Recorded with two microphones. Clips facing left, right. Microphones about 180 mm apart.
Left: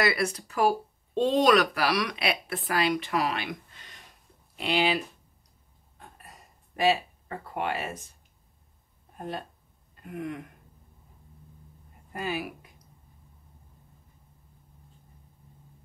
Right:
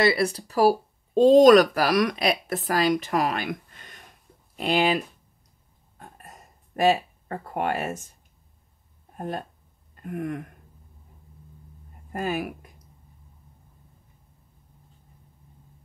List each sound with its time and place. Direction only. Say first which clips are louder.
0.0 s speech: right 5 dB; 30° right (ahead or behind); by 5.0 s 45° right (ahead or behind)
5.9 s a sound: right 4 dB; 45° right (ahead or behind)
9.1 s speech: right 4 dB; 45° right (ahead or behind)
12.1 s speech: right 4 dB; 45° right (ahead or behind)